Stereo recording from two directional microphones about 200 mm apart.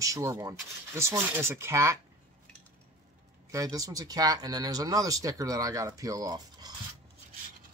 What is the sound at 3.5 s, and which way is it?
Rub, 15° right (ahead or behind).